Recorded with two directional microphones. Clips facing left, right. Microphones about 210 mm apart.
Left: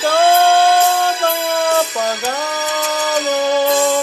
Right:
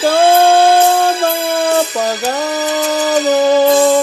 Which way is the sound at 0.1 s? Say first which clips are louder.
Right 2 dB; 30° right (ahead or behind).